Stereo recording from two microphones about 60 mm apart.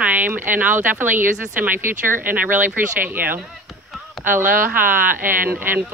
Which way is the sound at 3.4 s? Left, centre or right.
Centre.